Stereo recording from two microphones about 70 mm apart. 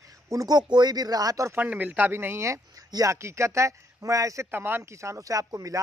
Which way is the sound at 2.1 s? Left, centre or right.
Right.